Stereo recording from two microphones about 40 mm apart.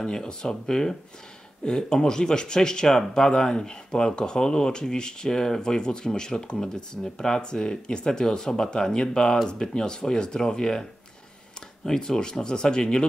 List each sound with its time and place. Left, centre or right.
0.0 s speech: centre